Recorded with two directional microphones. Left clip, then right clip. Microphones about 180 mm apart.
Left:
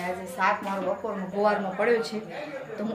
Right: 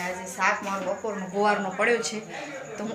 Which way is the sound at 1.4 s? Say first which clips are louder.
Right 1 dB; centre (ahead or behind).